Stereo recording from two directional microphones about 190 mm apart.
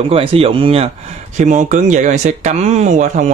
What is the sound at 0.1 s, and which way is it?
Speech, 30° right (ahead or behind).